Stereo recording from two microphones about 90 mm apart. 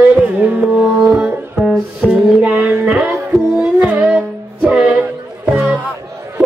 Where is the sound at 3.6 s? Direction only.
15° right (ahead or behind).